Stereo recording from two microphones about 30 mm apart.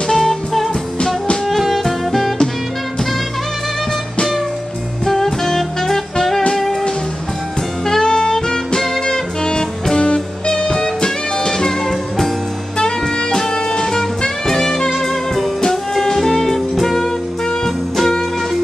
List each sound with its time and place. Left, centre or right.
0.1 s music: centre
1.8 s music: centre
5.0 s music: centre
7.8 s music: centre
11.1 s music: centre
12.7 s saxophone: left
13.4 s music: left